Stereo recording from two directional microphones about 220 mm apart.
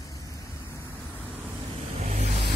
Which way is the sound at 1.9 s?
30° right (ahead or behind).